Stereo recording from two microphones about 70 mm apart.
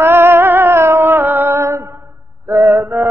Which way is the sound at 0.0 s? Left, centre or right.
Right.